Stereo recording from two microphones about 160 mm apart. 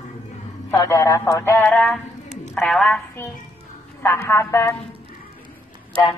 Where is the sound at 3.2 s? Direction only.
15° left (ahead or behind).